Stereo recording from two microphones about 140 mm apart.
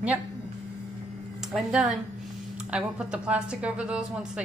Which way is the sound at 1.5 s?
5° right (ahead or behind).